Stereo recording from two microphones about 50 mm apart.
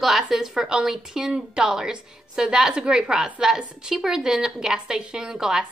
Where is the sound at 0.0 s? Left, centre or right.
Centre.